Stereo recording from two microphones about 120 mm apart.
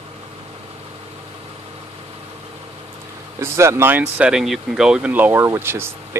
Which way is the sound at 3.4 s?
20° right (ahead or behind).